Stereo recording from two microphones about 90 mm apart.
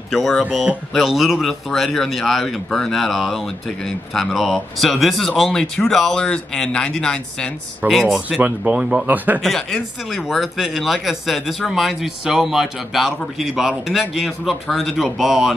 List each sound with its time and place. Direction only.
0.1 s speech: centre (ahead or behind)
8.4 s speech: 15° right (ahead or behind)
9.4 s speech: 5° left (ahead or behind)